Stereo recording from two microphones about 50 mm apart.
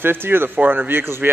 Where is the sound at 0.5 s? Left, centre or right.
Right.